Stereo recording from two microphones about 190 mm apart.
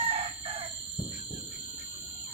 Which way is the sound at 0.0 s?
30° right (ahead or behind).